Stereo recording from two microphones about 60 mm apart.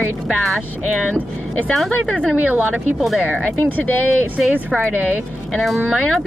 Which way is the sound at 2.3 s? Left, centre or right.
Right.